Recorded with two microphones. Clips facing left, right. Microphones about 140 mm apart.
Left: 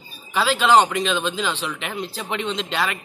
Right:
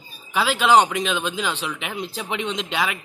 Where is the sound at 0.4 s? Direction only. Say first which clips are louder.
Even; 10° right (ahead or behind).